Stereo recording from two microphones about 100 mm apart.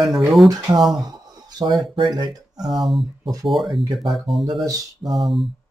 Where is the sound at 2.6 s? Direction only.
Centre (ahead or behind).